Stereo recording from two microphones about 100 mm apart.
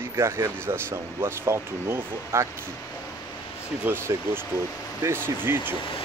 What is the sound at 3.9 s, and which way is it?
Speech, 25° right (ahead or behind).